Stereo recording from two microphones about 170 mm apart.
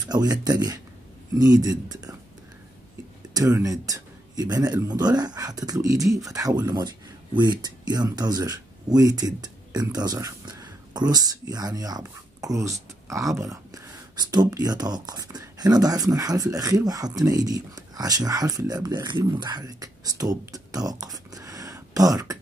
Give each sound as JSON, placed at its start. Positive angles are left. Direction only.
{"t": 0.0, "sound": "a man's voice", "side_deg": -20}
{"t": 3.3, "sound": "a man's voice", "side_deg": -20}